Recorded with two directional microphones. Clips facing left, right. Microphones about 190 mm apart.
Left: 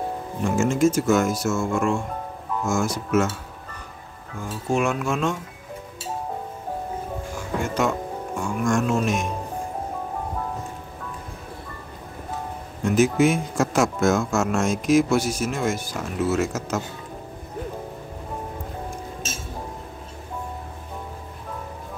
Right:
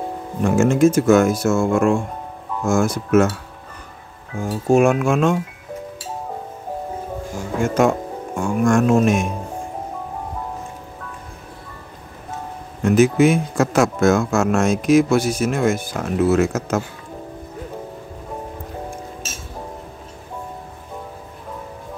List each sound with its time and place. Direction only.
0.4 s speech: 60° right (ahead or behind)
4.4 s speech: 45° right (ahead or behind)
7.6 s speech: 50° right (ahead or behind)
12.8 s speech: 65° right (ahead or behind)